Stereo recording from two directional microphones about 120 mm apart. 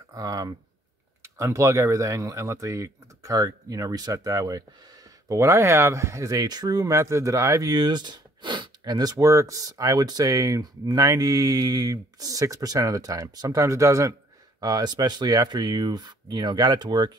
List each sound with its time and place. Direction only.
0.1 s speech: 30° right (ahead or behind)